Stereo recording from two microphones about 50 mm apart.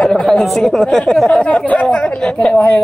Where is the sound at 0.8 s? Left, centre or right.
Centre.